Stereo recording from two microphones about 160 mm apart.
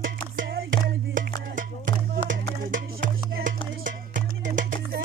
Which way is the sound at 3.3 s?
55° right (ahead or behind).